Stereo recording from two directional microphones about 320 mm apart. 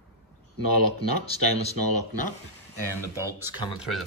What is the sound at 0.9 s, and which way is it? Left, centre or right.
Speech, centre.